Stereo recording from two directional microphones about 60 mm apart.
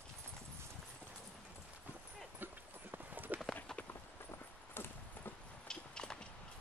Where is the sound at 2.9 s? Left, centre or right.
Right.